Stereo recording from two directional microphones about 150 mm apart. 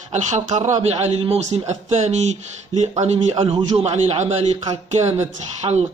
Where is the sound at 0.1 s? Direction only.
50° right (ahead or behind).